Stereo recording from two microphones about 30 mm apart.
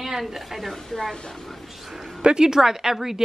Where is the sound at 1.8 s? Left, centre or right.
Centre.